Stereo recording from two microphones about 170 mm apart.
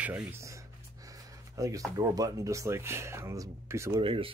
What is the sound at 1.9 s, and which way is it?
Speech, 20° right (ahead or behind).